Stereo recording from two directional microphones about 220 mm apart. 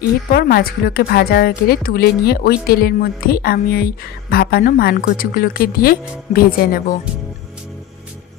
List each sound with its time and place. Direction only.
0.3 s a woman's voice: 45° left (ahead or behind)